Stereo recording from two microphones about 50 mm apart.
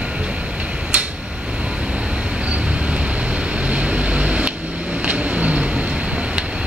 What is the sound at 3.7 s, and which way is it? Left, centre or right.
Vehicle, right.